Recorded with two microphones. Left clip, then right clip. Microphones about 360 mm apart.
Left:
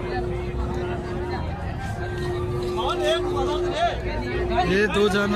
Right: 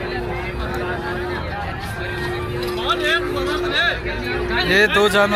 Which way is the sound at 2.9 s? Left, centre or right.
Centre.